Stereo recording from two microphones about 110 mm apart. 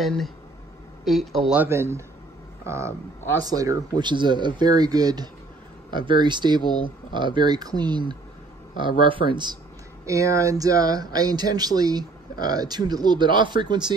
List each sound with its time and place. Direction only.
0.0 s speech: centre (ahead or behind)
1.7 s speech: 25° right (ahead or behind)
4.0 s speech: 45° right (ahead or behind)
10.0 s speech: 30° right (ahead or behind)